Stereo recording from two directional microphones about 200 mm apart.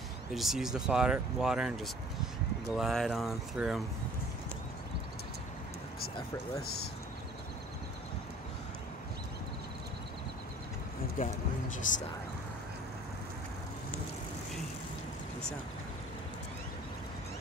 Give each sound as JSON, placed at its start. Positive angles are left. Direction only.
{"t": 0.3, "sound": "speech", "side_deg": 0}
{"t": 6.6, "sound": "speech", "side_deg": 50}
{"t": 11.2, "sound": "speech", "side_deg": 40}